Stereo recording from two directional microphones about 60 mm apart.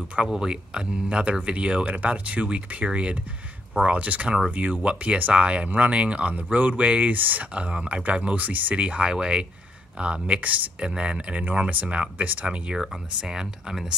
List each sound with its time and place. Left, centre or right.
0.1 s speech: centre